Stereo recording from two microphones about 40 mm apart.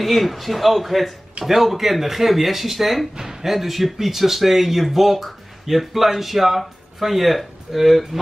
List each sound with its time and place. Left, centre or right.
0.0 s speech: centre